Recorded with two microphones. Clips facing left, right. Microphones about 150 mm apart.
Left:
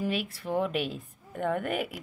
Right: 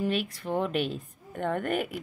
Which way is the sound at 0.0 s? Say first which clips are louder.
Right 2 dB; 5° left (ahead or behind).